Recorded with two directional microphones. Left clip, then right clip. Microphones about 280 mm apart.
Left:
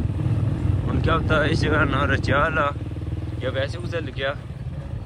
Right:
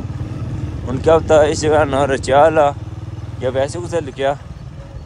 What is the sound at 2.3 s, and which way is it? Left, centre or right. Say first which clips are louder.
Speech: right 12 dB; right.